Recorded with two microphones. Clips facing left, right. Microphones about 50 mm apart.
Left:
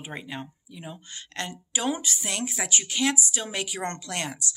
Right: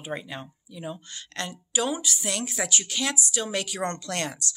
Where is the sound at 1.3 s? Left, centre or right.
Left.